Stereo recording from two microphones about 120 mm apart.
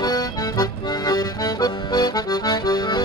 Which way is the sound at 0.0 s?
35° left (ahead or behind).